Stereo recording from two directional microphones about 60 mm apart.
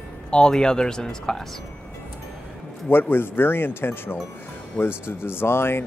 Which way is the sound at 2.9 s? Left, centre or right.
Left.